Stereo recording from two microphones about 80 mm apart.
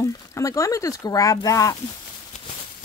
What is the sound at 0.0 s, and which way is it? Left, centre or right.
Speech, left.